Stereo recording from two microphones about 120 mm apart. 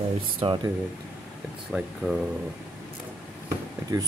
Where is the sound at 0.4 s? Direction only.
50° right (ahead or behind).